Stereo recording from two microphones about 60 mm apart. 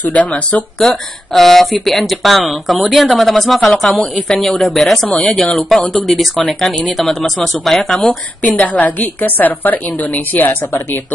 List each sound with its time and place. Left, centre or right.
0.1 s a woman's voice: left
0.7 s speech: centre
8.4 s a woman's voice: left